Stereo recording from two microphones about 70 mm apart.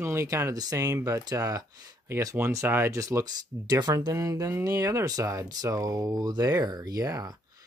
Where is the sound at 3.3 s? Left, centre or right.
Right.